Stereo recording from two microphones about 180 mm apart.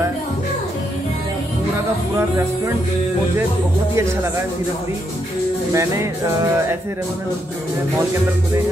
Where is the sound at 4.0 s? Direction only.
15° right (ahead or behind).